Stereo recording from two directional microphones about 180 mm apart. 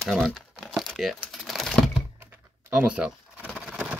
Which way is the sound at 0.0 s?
Centre (ahead or behind).